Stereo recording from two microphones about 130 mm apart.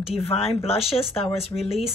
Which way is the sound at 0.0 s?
50° left (ahead or behind).